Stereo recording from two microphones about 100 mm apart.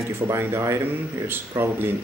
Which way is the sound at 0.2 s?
25° right (ahead or behind).